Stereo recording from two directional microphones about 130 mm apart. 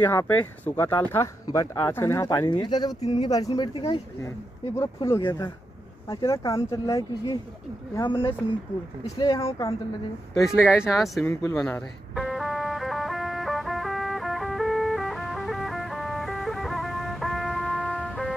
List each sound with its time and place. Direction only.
0.0 s speech: 15° left (ahead or behind); by 4.0 s 40° left (ahead or behind)
4.7 s speech: 20° left (ahead or behind)
8.0 s speech: 40° left (ahead or behind)
9.0 s speech: 30° left (ahead or behind)
10.3 s speech: centre (ahead or behind)
11.2 s speech: 20° left (ahead or behind)
12.2 s music: centre (ahead or behind)